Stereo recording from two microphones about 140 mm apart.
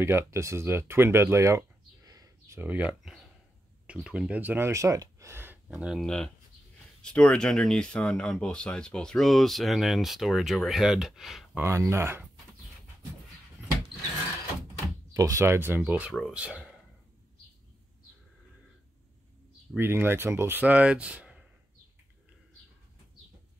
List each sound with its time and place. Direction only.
0.0 s speech: 20° right (ahead or behind)
2.0 s a sound: 25° right (ahead or behind)
3.8 s speech: 10° right (ahead or behind)
5.9 s speech: 5° left (ahead or behind)
11.6 s speech: 20° right (ahead or behind)
15.1 s speech: 20° right (ahead or behind); by 16.5 s 5° right (ahead or behind)
19.8 s speech: 15° right (ahead or behind)